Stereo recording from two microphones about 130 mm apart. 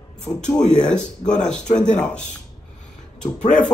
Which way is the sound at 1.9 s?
10° left (ahead or behind).